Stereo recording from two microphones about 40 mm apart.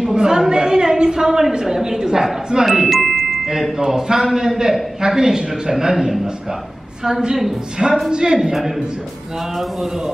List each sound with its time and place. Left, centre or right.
0.1 s a woman's voice: centre
0.5 s a sound: centre
1.5 s a man's voice: centre